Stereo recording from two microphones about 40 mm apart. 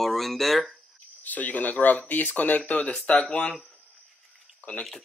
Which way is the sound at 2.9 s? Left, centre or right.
Left.